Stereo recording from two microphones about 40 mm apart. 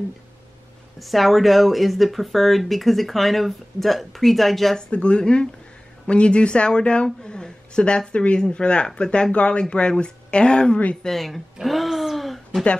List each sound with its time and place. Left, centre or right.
0.9 s speech: centre
4.7 s speech: left
7.2 s a sound: left
8.1 s speech: left
11.1 s speech: centre
11.6 s a sound: centre